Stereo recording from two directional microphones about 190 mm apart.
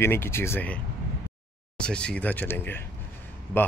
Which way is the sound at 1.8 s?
5° left (ahead or behind).